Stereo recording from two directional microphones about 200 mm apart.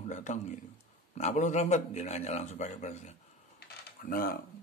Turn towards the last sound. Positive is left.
turn(degrees=45)  # may be behind; listen again after turning